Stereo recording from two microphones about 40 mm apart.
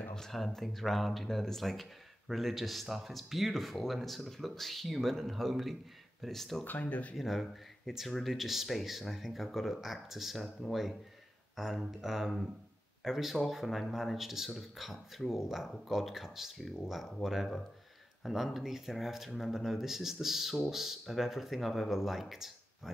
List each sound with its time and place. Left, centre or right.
0.1 s speech: centre
6.6 s speech: left
7.2 s speech: centre